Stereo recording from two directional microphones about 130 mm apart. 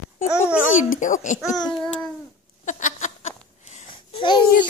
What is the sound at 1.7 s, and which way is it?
Babbling, 5° left (ahead or behind).